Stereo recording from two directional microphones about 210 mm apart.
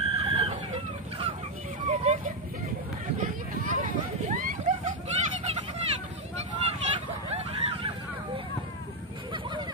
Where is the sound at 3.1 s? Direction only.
35° right (ahead or behind).